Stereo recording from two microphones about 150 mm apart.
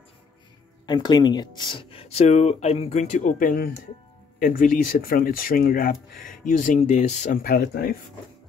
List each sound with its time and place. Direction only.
0.8 s speech: 30° left (ahead or behind); by 7.3 s 50° left (ahead or behind)
7.4 s speech: 90° left